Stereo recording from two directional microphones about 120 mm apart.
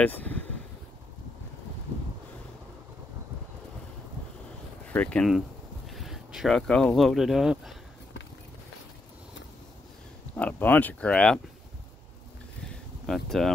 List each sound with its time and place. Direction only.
0.0 s speech: 15° left (ahead or behind)
4.8 s speech: 10° left (ahead or behind)
5.9 s speech: centre (ahead or behind)
10.3 s speech: 15° left (ahead or behind)
12.6 s a sound: 5° left (ahead or behind)